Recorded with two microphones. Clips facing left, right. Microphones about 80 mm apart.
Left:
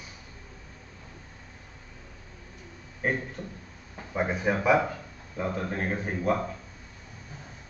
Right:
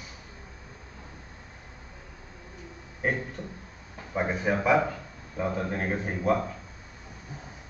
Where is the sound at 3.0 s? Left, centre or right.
Centre.